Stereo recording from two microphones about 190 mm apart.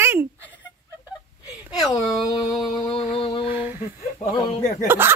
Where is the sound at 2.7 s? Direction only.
25° left (ahead or behind).